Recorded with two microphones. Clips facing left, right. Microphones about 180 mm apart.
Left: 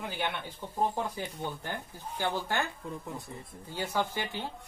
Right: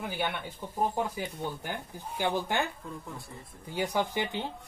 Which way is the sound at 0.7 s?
10° right (ahead or behind).